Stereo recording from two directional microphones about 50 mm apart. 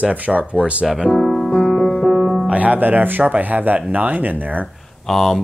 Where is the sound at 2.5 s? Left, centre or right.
Right.